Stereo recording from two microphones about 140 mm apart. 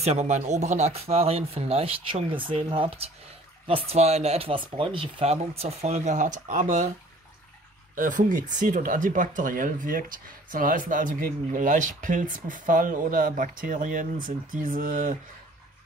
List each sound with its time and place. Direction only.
0.0 s speech: 50° right (ahead or behind)
7.9 s speech: 75° right (ahead or behind)